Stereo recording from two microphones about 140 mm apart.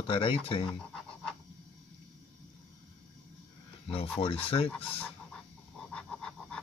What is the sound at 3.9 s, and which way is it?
Speech, 45° left (ahead or behind).